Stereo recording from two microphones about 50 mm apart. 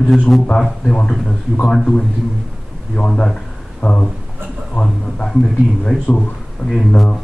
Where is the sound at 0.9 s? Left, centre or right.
Centre.